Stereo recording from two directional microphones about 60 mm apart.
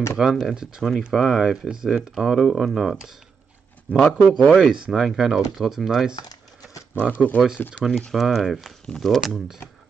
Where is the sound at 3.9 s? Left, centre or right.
Left.